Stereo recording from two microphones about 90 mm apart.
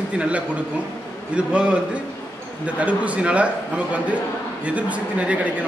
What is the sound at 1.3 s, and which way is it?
A man's voice, 10° right (ahead or behind).